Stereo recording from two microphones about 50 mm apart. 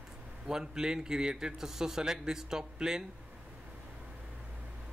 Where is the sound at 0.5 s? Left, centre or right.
Centre.